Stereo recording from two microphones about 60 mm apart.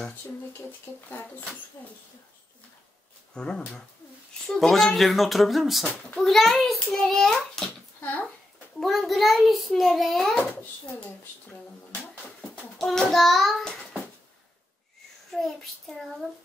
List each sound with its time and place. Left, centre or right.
0.7 s speech: left
3.3 s speech: centre
4.5 s a child's voice: centre
8.0 s speech: left
8.7 s a child's voice: centre
12.4 s a child's voice: centre
15.3 s a child's voice: centre